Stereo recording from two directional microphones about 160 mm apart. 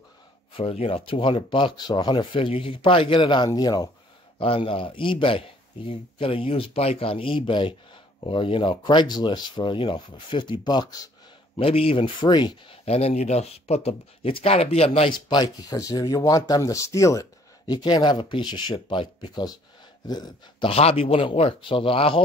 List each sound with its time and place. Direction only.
0.6 s speech: 35° left (ahead or behind)
11.5 s speech: 35° left (ahead or behind)
12.8 s speech: 40° left (ahead or behind)